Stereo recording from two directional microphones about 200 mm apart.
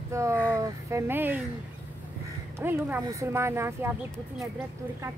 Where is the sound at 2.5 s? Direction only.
10° right (ahead or behind).